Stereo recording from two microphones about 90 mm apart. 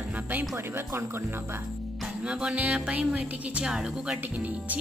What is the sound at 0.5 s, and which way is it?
Speech, 30° right (ahead or behind).